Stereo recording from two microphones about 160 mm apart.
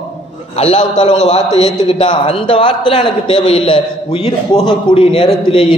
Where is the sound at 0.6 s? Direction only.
45° left (ahead or behind).